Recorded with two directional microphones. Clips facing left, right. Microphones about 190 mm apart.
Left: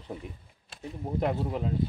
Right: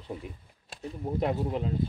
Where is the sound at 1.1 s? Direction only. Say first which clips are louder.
Even; centre (ahead or behind).